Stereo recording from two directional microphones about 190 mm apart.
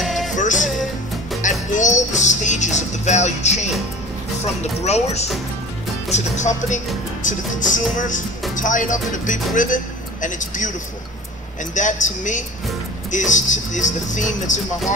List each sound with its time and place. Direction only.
0.0 s music: centre (ahead or behind)
0.3 s music: 40° left (ahead or behind)
1.4 s speech: 40° left (ahead or behind)
4.8 s speech: 35° left (ahead or behind)
11.7 s speech: 40° left (ahead or behind)